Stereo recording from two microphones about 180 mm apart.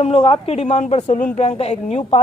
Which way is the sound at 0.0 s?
30° left (ahead or behind).